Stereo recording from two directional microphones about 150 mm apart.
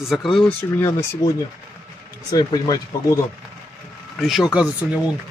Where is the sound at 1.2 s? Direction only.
25° left (ahead or behind).